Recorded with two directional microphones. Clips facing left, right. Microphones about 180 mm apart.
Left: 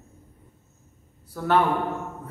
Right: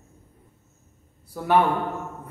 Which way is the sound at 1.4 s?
15° right (ahead or behind).